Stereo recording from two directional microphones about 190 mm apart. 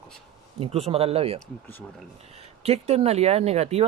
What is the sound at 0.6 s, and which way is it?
Speech, 30° right (ahead or behind).